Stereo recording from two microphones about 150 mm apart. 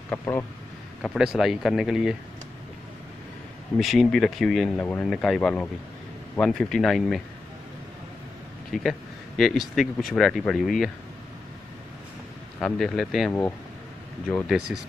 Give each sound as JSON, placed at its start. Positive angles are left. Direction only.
{"t": 0.2, "sound": "speech", "side_deg": 20}
{"t": 1.0, "sound": "speech", "side_deg": -5}
{"t": 3.8, "sound": "speech", "side_deg": 0}
{"t": 8.7, "sound": "speech", "side_deg": 0}
{"t": 12.5, "sound": "speech", "side_deg": 5}
{"t": 14.7, "sound": "speech", "side_deg": -5}